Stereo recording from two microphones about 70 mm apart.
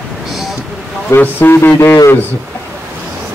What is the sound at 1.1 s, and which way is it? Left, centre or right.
Speech, left.